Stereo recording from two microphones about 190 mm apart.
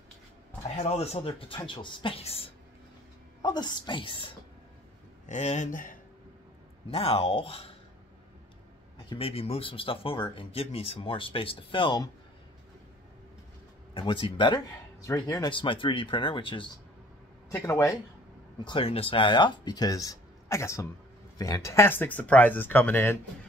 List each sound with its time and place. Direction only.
0.7 s speech: 35° left (ahead or behind)
5.3 s speech: 40° left (ahead or behind)
6.9 s speech: 30° left (ahead or behind)
9.1 s speech: 30° left (ahead or behind)
13.9 s speech: 25° left (ahead or behind)
17.5 s speech: 15° left (ahead or behind)
18.7 s speech: 30° left (ahead or behind); by 23.1 s 10° left (ahead or behind)